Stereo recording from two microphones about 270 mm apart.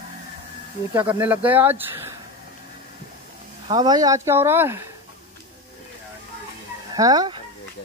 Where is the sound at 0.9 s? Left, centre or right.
Centre.